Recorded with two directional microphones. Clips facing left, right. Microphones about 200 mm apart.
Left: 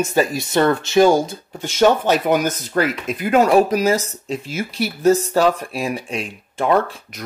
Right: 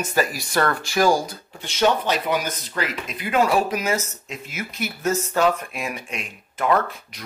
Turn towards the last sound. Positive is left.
turn(degrees=30)  # may be behind; listen again after turning